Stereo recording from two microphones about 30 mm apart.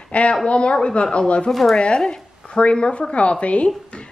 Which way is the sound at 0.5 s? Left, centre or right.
Left.